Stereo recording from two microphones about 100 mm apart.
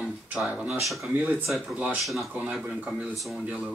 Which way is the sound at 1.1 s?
20° right (ahead or behind).